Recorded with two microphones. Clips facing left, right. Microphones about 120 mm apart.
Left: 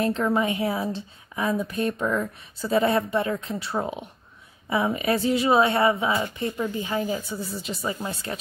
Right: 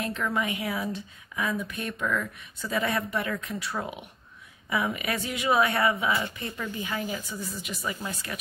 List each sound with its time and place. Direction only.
0.0 s a woman's voice: 30° left (ahead or behind)